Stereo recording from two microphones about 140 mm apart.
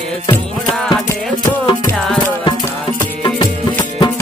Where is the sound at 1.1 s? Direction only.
20° left (ahead or behind).